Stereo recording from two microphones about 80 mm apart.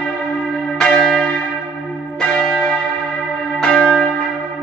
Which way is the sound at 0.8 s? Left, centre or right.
Centre.